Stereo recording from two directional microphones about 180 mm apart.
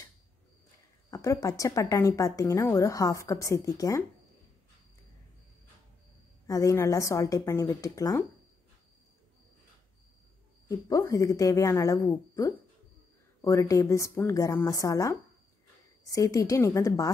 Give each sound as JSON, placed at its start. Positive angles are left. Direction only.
{"t": 1.1, "sound": "a woman's voice", "side_deg": 20}
{"t": 6.4, "sound": "a woman's voice", "side_deg": 20}
{"t": 10.7, "sound": "a woman's voice", "side_deg": 20}